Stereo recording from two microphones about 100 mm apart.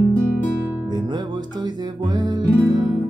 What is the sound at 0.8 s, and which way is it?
Music, 45° right (ahead or behind).